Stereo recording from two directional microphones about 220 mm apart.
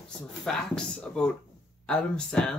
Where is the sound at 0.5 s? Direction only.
5° left (ahead or behind).